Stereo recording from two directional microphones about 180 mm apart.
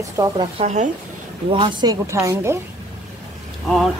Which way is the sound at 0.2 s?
15° right (ahead or behind).